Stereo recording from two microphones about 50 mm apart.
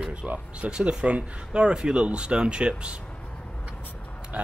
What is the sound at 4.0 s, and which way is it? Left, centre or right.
Vehicle, left.